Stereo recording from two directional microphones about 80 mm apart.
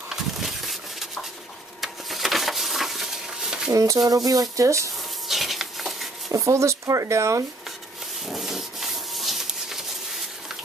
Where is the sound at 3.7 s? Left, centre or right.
Right.